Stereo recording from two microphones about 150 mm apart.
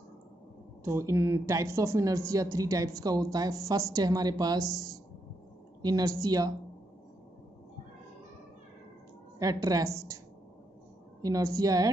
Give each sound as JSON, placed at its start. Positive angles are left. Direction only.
{"t": 0.8, "sound": "speech", "side_deg": -20}
{"t": 9.4, "sound": "speech", "side_deg": -25}
{"t": 11.2, "sound": "speech", "side_deg": -25}